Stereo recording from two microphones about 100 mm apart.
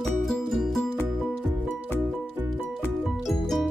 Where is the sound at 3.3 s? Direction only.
Centre (ahead or behind).